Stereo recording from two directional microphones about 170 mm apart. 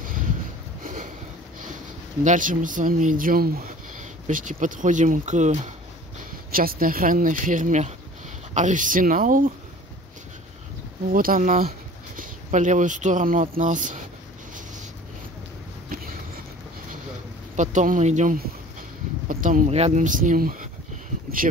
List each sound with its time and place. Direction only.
2.2 s speech: 50° right (ahead or behind)
6.5 s speech: 55° right (ahead or behind)
11.1 s speech: 55° right (ahead or behind)
15.9 s a sound: 55° right (ahead or behind)
17.6 s speech: 45° right (ahead or behind)